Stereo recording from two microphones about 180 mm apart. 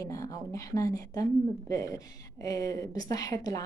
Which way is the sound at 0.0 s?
20° left (ahead or behind).